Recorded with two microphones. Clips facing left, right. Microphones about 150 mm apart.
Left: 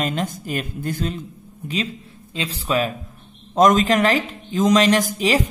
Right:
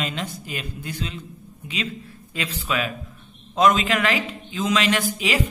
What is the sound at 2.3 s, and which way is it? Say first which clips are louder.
A man's voice: left 4 dB; 35° left (ahead or behind).